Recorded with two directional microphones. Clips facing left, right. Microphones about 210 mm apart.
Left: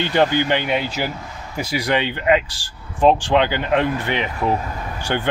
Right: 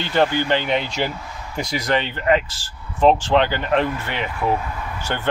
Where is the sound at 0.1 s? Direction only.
15° left (ahead or behind).